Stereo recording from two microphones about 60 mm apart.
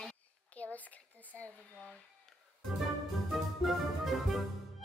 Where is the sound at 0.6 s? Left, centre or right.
Left.